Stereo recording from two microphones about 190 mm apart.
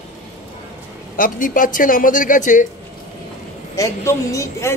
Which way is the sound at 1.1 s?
45° left (ahead or behind).